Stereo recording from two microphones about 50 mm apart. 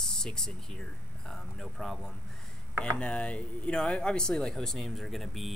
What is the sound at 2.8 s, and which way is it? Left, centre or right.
Speech, left.